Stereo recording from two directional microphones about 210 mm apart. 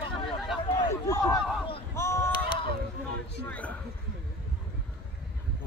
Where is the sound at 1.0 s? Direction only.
15° left (ahead or behind).